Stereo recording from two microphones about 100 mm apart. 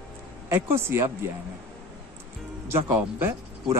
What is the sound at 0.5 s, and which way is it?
Speech, 25° right (ahead or behind).